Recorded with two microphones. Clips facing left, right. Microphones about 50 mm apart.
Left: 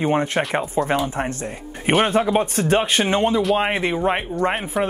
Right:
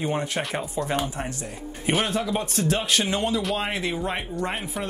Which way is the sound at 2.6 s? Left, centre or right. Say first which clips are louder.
Left 5 dB; left.